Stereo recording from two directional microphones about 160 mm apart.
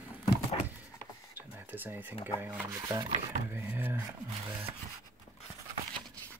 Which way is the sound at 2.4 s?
15° right (ahead or behind).